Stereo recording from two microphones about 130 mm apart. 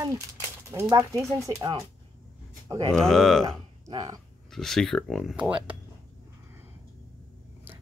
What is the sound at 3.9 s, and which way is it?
Speech, 35° right (ahead or behind).